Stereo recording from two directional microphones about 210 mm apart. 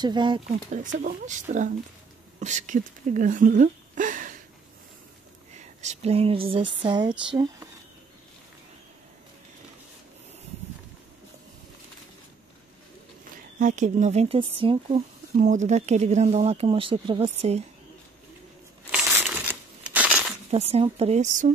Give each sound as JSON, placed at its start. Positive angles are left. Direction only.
{"t": 0.0, "sound": "speech", "side_deg": -20}
{"t": 0.9, "sound": "speech", "side_deg": -35}
{"t": 5.8, "sound": "speech", "side_deg": -30}
{"t": 13.6, "sound": "speech", "side_deg": -35}
{"t": 15.3, "sound": "speech", "side_deg": -35}
{"t": 18.9, "sound": "crumpling", "side_deg": -5}
{"t": 20.5, "sound": "speech", "side_deg": -30}